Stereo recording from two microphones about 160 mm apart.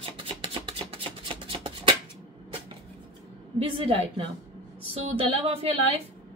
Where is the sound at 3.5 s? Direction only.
35° right (ahead or behind).